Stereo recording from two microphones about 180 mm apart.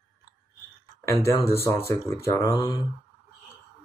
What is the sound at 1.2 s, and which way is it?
Speech, 15° left (ahead or behind).